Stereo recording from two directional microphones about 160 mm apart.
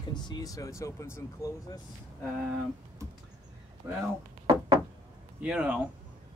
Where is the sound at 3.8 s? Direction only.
15° right (ahead or behind).